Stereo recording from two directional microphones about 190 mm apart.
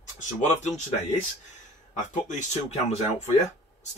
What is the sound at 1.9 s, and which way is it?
Speech, 40° left (ahead or behind).